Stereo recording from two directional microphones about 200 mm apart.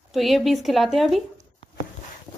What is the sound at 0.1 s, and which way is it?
Speech, centre (ahead or behind).